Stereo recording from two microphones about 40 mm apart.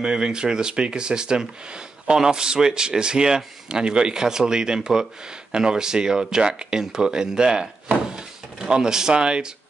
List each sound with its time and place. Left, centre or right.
0.0 s speech: centre
8.1 s drawer open or close: centre